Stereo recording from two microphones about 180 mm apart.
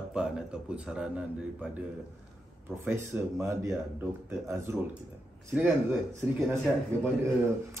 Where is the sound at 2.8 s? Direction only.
15° right (ahead or behind).